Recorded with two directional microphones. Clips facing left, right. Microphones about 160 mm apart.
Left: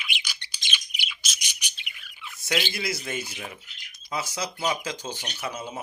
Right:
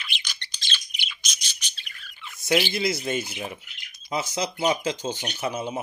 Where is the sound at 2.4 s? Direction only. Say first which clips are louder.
Right 6 dB; 25° right (ahead or behind).